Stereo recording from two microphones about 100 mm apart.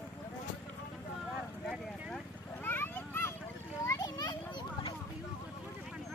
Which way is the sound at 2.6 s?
20° left (ahead or behind).